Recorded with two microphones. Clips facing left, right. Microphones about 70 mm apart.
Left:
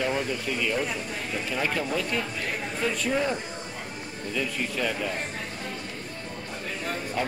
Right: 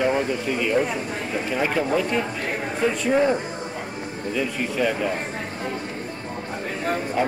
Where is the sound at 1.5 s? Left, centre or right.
Centre.